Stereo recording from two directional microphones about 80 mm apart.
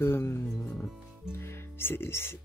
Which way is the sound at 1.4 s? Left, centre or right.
Left.